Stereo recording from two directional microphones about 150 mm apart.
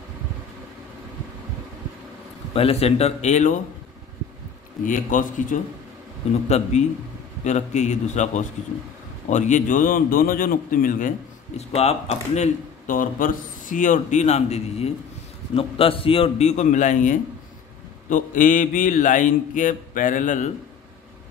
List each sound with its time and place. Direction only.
2.5 s speech: 40° left (ahead or behind)
4.8 s mantra: 60° left (ahead or behind)
6.2 s speech: 45° left (ahead or behind)
7.4 s speech: 50° left (ahead or behind)
9.3 s mantra: 55° left (ahead or behind)
11.7 s speech: 45° left (ahead or behind)
18.1 s mantra: 60° left (ahead or behind)